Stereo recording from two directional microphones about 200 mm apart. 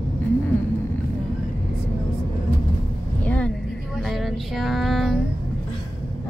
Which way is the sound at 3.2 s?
5° left (ahead or behind).